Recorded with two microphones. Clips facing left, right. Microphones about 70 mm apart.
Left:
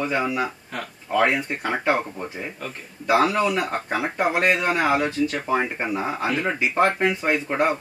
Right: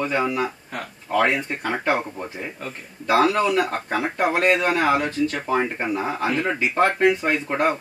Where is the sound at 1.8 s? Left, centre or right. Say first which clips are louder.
Left 1 dB; centre.